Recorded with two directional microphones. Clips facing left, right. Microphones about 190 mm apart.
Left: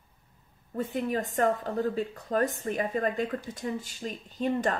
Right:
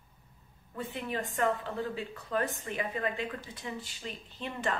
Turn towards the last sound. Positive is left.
turn(degrees=40)  # may be behind; listen again after turning